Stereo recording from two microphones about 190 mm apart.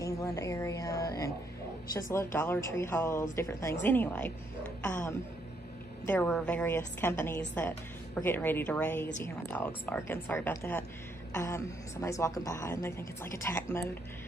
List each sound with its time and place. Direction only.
0.0 s a woman's voice: 15° left (ahead or behind)